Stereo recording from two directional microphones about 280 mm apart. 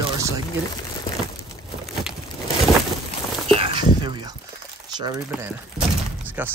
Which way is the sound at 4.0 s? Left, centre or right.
Centre.